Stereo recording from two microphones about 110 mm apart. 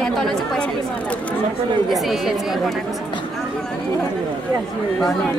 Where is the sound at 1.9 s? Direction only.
Centre (ahead or behind).